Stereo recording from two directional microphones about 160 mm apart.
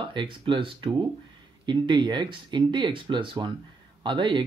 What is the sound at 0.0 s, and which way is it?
Speech, 30° right (ahead or behind).